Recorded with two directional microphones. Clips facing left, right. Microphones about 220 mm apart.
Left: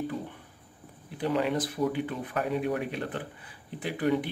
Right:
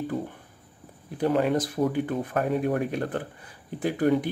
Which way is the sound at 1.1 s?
45° right (ahead or behind).